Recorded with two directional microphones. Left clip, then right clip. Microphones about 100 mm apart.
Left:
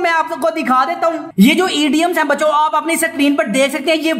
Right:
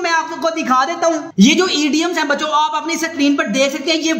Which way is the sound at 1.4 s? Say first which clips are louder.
Left 1 dB; 30° left (ahead or behind).